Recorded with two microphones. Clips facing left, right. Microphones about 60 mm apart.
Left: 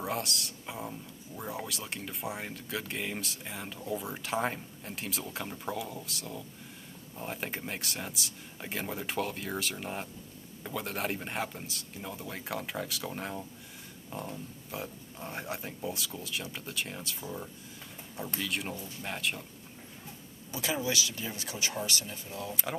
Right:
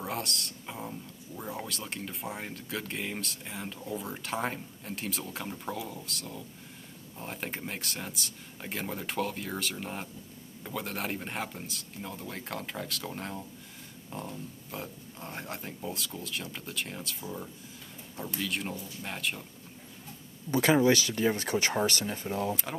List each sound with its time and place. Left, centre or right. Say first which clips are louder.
0.0 s speech: left 1 dB; centre
20.5 s speech: right 9 dB; right